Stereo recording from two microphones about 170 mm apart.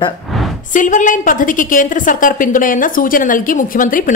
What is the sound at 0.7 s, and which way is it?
Speech, 50° left (ahead or behind).